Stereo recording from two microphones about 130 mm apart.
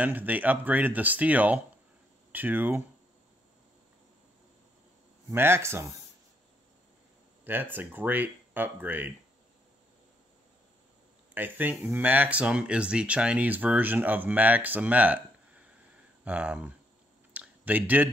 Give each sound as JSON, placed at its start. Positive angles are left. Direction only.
{"t": 0.0, "sound": "speech", "side_deg": -15}
{"t": 5.3, "sound": "speech", "side_deg": -15}
{"t": 7.4, "sound": "speech", "side_deg": -15}
{"t": 11.3, "sound": "speech", "side_deg": -15}
{"t": 17.3, "sound": "a sound", "side_deg": -10}